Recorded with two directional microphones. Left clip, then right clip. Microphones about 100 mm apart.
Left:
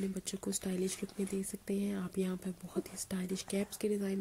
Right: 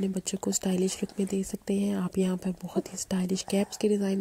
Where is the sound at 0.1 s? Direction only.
45° right (ahead or behind).